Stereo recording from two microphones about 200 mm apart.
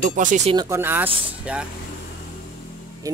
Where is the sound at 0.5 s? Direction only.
20° right (ahead or behind).